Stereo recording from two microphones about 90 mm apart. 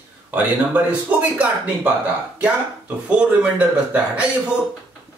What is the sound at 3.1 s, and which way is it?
Speech, 15° right (ahead or behind).